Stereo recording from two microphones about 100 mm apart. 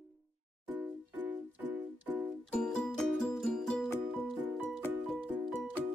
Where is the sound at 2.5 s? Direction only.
5° left (ahead or behind).